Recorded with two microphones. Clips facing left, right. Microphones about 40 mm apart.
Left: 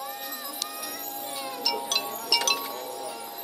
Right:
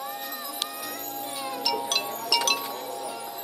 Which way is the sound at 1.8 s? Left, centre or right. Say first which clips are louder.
Right 2 dB; centre.